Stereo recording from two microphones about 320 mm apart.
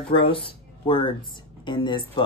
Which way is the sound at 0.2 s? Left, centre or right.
Centre.